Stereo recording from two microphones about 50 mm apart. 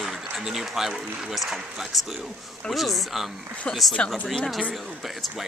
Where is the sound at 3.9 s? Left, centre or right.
Centre.